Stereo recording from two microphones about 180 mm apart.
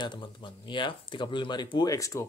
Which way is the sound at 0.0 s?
25° left (ahead or behind).